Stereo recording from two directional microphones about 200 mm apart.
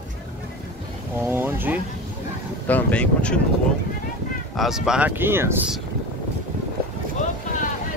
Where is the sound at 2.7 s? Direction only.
10° left (ahead or behind).